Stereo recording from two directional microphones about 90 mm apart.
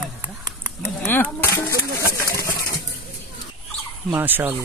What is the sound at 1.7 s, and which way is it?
Speech, 35° left (ahead or behind).